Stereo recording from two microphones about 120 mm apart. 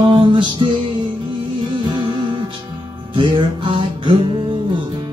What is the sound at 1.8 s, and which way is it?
Music, 40° right (ahead or behind).